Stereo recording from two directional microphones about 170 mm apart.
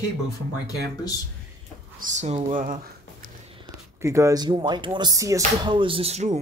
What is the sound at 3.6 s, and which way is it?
Speech, 15° right (ahead or behind).